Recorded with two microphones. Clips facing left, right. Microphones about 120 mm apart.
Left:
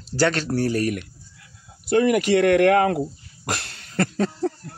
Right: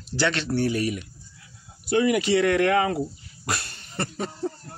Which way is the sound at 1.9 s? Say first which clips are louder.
Left 3 dB; 50° left (ahead or behind).